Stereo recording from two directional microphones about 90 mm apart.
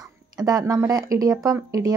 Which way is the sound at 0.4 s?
45° right (ahead or behind).